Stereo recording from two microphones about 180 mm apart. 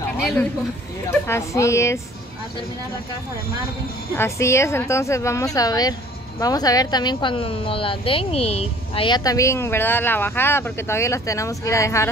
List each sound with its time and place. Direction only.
1.2 s a woman's voice: 15° left (ahead or behind)
4.1 s a woman's voice: 15° left (ahead or behind)